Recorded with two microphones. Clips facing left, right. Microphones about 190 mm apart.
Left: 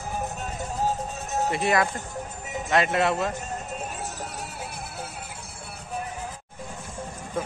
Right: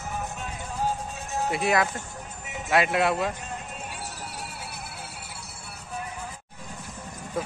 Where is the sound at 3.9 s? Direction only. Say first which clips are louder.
Left 3 dB; 45° left (ahead or behind).